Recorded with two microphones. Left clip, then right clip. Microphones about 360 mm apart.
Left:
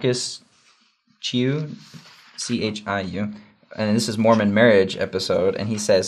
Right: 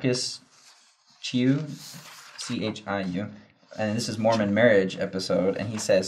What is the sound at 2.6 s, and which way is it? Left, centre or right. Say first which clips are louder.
Speech: left 4 dB; left.